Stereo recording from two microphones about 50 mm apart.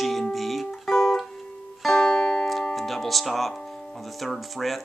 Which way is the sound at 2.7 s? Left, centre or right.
Centre.